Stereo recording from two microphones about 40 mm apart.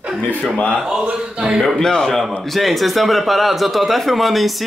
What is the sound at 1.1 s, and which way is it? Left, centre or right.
Speech, right.